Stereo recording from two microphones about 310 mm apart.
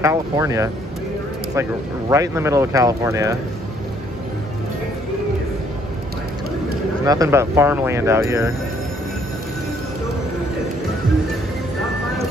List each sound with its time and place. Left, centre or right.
0.0 s speech: centre
7.1 s speech: centre